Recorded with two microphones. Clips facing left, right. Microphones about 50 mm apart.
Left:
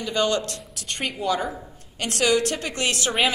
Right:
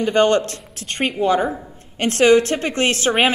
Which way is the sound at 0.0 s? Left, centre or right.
Right.